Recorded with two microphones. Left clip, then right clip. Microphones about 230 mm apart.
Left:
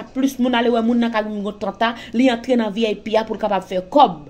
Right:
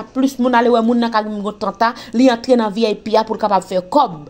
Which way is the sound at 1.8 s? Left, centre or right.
Right.